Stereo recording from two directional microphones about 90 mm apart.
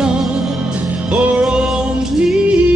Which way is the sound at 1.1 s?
15° right (ahead or behind).